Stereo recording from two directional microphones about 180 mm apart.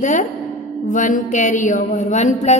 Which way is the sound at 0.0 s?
45° left (ahead or behind).